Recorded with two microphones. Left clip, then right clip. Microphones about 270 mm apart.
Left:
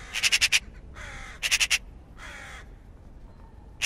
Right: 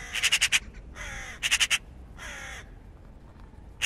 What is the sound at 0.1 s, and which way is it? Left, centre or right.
Crow, right.